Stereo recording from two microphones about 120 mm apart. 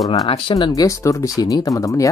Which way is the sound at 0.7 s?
25° left (ahead or behind).